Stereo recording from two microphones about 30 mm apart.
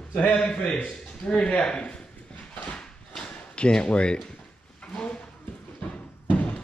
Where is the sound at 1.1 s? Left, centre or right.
Left.